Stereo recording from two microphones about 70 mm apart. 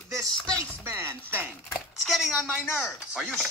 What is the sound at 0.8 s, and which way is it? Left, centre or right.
Chopping, right.